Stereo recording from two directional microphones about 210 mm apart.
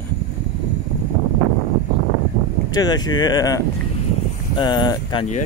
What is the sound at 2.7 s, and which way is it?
Speech, 20° left (ahead or behind).